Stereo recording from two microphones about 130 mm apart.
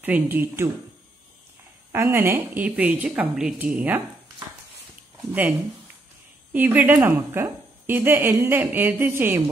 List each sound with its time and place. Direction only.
0.0 s a woman's voice: 15° right (ahead or behind)
1.9 s a woman's voice: 15° right (ahead or behind)
6.5 s a woman's voice: 15° right (ahead or behind)